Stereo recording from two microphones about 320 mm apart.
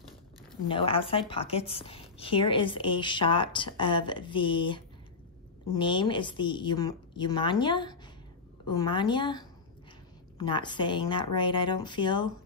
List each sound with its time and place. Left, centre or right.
0.7 s a woman's voice: centre